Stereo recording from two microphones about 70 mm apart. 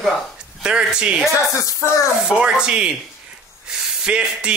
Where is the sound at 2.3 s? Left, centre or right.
Centre.